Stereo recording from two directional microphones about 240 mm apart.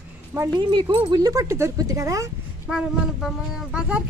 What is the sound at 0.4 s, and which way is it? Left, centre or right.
Speech, centre.